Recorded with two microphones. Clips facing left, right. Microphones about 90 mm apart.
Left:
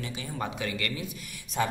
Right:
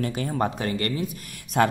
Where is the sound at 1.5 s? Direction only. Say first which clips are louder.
Right 8 dB; 65° right (ahead or behind).